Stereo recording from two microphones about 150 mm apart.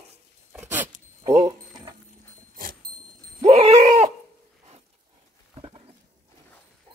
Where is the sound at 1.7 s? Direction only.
30° right (ahead or behind).